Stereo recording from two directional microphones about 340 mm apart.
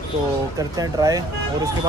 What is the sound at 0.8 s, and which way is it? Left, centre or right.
Speech, centre.